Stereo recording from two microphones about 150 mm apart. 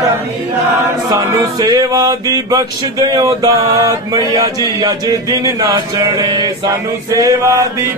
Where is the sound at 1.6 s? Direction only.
25° right (ahead or behind).